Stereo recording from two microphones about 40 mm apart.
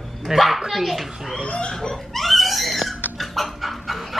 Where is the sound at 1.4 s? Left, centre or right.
Left.